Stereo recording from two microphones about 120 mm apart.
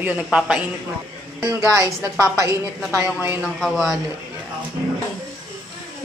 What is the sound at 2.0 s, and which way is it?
Speech, 25° right (ahead or behind).